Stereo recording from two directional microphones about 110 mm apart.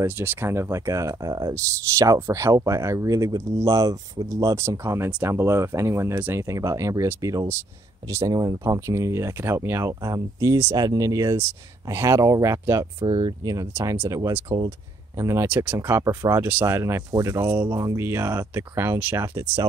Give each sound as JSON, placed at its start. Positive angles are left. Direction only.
{"t": 0.0, "sound": "speech", "side_deg": -20}
{"t": 13.0, "sound": "speech", "side_deg": -45}
{"t": 15.4, "sound": "speech", "side_deg": -15}